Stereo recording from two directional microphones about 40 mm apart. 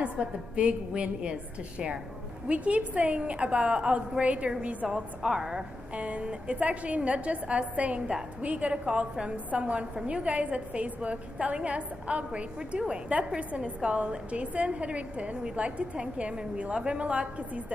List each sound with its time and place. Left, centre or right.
0.0 s a woman's voice: right
2.4 s a woman's voice: right
3.2 s a woman's voice: right
4.9 s a woman's voice: centre
5.9 s a woman's voice: right